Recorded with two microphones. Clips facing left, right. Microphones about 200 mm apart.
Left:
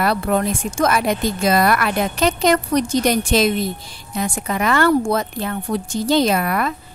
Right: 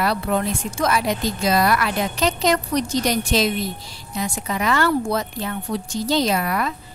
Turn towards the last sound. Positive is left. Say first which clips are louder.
# left 3 dB
turn(degrees=55)  # may be behind; listen again after turning